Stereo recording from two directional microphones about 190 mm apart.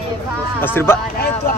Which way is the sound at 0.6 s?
10° left (ahead or behind).